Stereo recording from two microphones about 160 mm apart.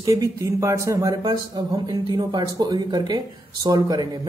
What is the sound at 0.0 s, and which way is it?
Speech, 20° right (ahead or behind).